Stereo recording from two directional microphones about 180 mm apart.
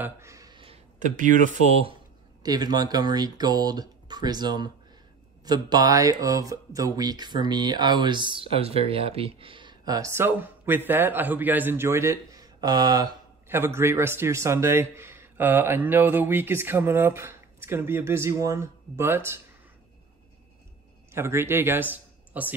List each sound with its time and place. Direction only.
0.0 s a sound: 15° right (ahead or behind)
0.9 s speech: 45° right (ahead or behind)
2.4 s a man's voice: 20° right (ahead or behind)
21.1 s speech: 15° right (ahead or behind)